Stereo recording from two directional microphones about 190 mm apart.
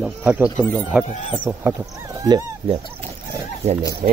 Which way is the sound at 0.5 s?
5° left (ahead or behind).